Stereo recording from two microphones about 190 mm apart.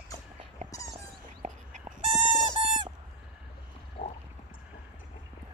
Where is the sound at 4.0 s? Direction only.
45° left (ahead or behind).